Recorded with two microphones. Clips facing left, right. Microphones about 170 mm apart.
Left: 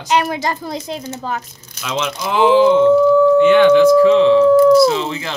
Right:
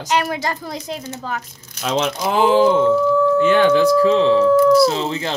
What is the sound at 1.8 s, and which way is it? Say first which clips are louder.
Speech: right 2 dB; 35° right (ahead or behind).